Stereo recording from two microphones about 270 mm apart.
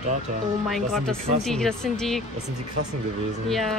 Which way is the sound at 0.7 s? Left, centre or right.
Centre.